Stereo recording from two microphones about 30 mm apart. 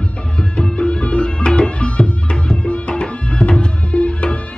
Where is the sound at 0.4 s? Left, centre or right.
Left.